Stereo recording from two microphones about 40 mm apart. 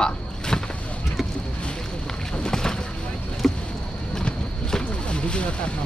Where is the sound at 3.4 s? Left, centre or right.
Centre.